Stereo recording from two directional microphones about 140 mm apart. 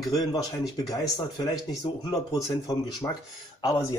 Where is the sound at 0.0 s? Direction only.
25° left (ahead or behind).